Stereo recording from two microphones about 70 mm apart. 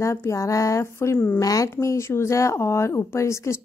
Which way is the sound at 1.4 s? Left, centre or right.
Left.